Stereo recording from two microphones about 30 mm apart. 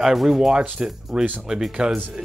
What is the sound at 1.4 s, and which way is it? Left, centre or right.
Speech, centre.